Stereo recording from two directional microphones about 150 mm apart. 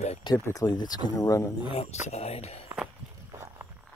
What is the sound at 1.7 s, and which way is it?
Speech, 45° left (ahead or behind).